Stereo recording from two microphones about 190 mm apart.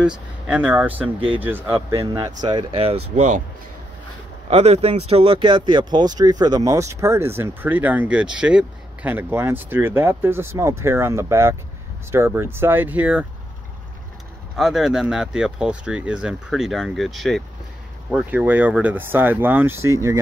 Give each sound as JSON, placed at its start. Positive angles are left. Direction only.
{"t": 0.0, "sound": "speech", "side_deg": -5}
{"t": 4.5, "sound": "speech", "side_deg": -35}
{"t": 14.6, "sound": "speech", "side_deg": -5}